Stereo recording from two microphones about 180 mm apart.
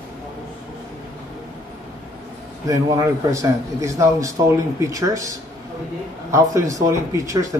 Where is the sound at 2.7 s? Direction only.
20° right (ahead or behind).